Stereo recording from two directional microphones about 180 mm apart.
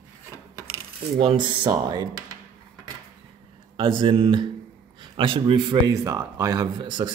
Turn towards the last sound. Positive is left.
turn(degrees=-25)  # may be behind; listen again after turning